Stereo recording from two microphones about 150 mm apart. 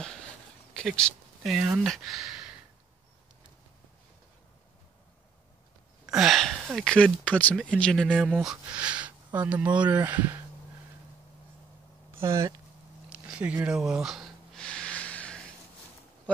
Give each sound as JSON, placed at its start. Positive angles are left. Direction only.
{"t": 0.7, "sound": "speech", "side_deg": 0}
{"t": 6.0, "sound": "speech", "side_deg": 0}
{"t": 8.7, "sound": "speech", "side_deg": -5}
{"t": 12.2, "sound": "speech", "side_deg": -20}
{"t": 13.1, "sound": "a sound", "side_deg": -10}
{"t": 13.7, "sound": "snort", "side_deg": -5}